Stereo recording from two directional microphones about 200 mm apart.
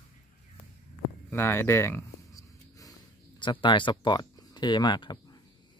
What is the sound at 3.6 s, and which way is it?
Speech, 25° left (ahead or behind).